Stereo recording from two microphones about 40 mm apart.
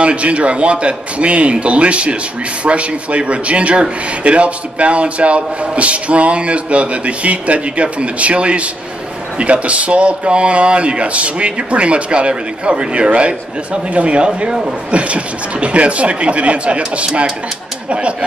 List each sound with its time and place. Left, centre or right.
0.0 s speech: right